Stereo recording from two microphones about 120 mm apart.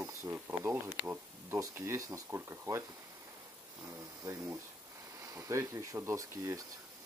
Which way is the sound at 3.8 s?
25° right (ahead or behind).